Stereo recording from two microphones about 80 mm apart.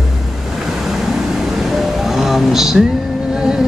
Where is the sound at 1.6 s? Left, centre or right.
Centre.